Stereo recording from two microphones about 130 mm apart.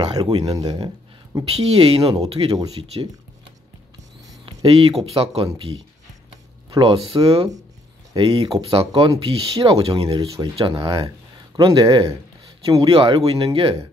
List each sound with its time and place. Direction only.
0.0 s speech: 35° right (ahead or behind)
1.6 s speech: 50° right (ahead or behind)
4.6 s speech: 50° right (ahead or behind)
8.2 s speech: 45° right (ahead or behind)
10.1 s speech: 30° right (ahead or behind)
12.9 s speech: 45° right (ahead or behind)